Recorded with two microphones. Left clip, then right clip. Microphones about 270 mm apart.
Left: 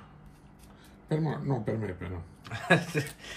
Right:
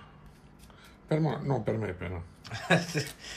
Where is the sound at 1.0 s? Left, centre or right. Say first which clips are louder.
Right 2 dB; centre.